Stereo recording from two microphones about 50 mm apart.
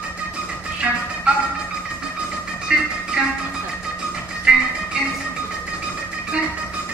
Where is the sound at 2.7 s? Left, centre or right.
Centre.